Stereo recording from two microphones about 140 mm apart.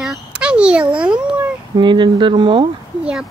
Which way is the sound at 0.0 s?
5° right (ahead or behind).